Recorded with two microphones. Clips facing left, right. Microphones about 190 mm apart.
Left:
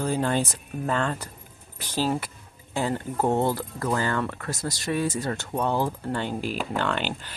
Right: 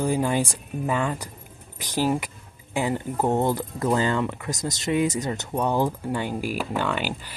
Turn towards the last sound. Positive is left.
turn(degrees=-10)  # may be behind; listen again after turning